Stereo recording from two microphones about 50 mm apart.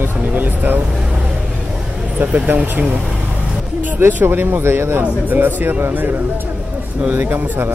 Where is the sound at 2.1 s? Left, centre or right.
Right.